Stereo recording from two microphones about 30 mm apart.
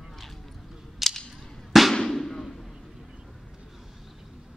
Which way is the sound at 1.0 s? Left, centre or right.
Centre.